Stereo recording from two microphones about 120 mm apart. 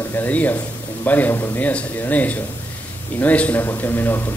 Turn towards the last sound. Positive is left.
turn(degrees=15)  # may be behind; listen again after turning